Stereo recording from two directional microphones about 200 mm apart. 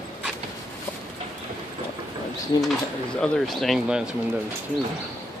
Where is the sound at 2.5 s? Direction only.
20° left (ahead or behind).